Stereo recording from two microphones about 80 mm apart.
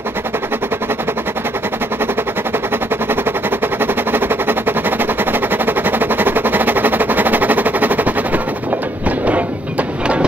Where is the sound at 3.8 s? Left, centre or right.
Right.